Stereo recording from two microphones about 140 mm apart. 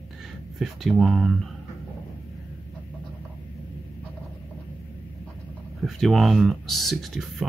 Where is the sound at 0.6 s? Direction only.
Centre (ahead or behind).